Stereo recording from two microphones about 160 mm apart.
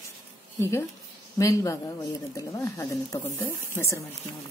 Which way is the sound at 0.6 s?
15° left (ahead or behind).